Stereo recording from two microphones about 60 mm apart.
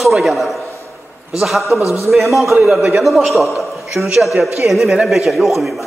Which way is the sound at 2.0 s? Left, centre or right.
Centre.